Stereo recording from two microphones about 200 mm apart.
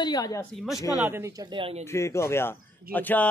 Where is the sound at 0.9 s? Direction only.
10° right (ahead or behind); by 1.9 s 30° right (ahead or behind).